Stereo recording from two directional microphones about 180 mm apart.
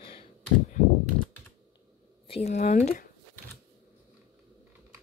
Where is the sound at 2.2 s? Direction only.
35° left (ahead or behind).